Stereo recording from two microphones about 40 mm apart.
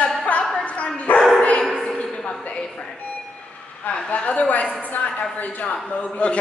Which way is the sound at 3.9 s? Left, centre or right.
Left.